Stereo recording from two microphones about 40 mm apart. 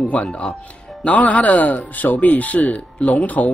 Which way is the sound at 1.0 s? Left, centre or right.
Left.